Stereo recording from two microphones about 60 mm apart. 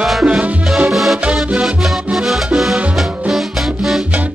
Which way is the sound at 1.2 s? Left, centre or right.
Centre.